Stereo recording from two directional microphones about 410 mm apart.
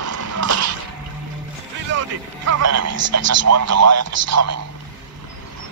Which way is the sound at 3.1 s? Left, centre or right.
Right.